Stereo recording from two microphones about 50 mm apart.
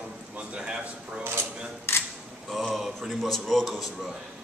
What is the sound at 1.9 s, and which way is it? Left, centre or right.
Camera, left.